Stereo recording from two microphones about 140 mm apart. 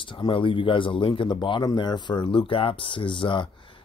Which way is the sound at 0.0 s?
35° left (ahead or behind).